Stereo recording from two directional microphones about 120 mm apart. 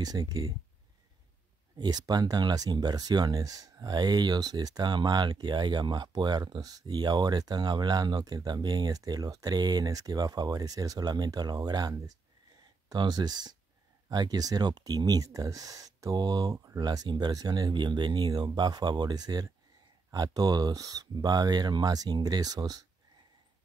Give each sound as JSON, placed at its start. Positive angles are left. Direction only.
{"t": 0.0, "sound": "speech", "side_deg": -30}
{"t": 1.8, "sound": "speech", "side_deg": -35}